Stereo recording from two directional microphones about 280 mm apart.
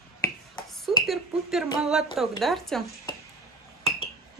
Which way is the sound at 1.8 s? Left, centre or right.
Centre.